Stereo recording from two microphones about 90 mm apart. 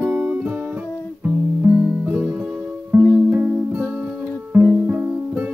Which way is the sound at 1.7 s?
10° right (ahead or behind).